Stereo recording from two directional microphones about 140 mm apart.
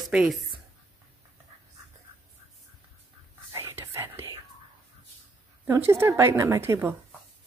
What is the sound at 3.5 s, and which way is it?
Whispering, 20° right (ahead or behind).